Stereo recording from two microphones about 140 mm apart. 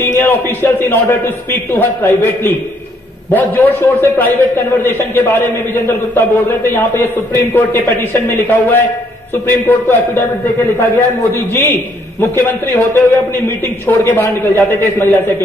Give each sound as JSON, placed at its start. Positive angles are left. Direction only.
{"t": 0.2, "sound": "a man's voice", "side_deg": 15}
{"t": 11.3, "sound": "a man's voice", "side_deg": 15}